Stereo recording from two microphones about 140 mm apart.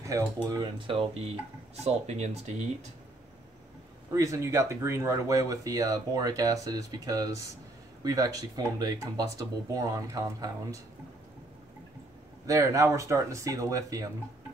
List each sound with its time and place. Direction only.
0.0 s speech: 20° right (ahead or behind)
0.7 s speech: 40° right (ahead or behind)
1.8 s speech: 50° right (ahead or behind)
4.1 s speech: 20° right (ahead or behind)
12.4 s speech: 25° right (ahead or behind)